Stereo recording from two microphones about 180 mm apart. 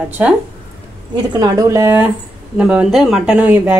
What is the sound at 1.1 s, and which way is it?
Speech, 20° right (ahead or behind).